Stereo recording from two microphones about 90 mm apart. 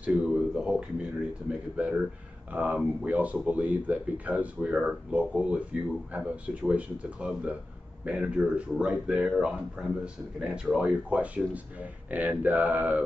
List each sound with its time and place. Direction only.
0.0 s speech: 15° right (ahead or behind)